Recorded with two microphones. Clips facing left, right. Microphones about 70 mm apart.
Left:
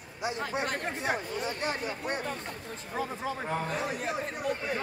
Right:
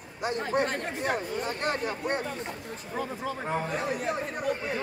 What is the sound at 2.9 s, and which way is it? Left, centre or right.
Speech, centre.